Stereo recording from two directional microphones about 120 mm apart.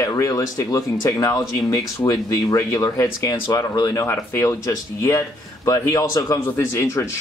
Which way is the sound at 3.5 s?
30° left (ahead or behind).